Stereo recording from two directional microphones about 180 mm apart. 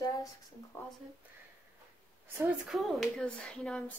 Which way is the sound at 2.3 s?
Centre (ahead or behind).